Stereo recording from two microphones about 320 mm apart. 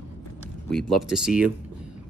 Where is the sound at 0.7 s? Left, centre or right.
Centre.